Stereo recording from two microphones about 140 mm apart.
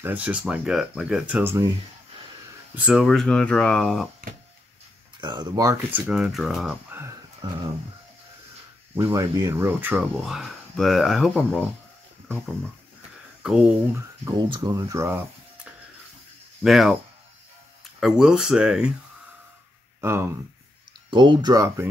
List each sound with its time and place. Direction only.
0.0 s speech: 10° right (ahead or behind)
2.7 s speech: 10° right (ahead or behind)
5.2 s speech: 30° right (ahead or behind)
5.9 s speech: 10° right (ahead or behind)
6.9 s a sound: 15° right (ahead or behind)
7.4 s speech: 30° right (ahead or behind)
8.9 s speech: 20° right (ahead or behind)
10.2 s speech: centre (ahead or behind)
13.4 s a sound: 5° right (ahead or behind)
13.9 s speech: 25° right (ahead or behind)
16.6 s speech: centre (ahead or behind)
18.0 s speech: 5° right (ahead or behind)
20.0 s speech: 20° right (ahead or behind)
21.1 s speech: 35° right (ahead or behind)